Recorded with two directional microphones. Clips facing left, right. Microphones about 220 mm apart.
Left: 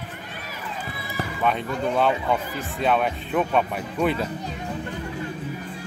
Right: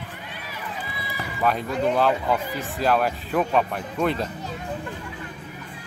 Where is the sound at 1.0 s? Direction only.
45° left (ahead or behind).